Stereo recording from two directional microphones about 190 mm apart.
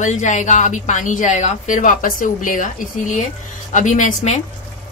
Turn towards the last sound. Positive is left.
turn(degrees=40)  # may be behind; listen again after turning